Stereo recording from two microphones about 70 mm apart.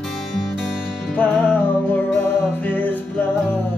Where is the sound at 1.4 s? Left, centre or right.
Left.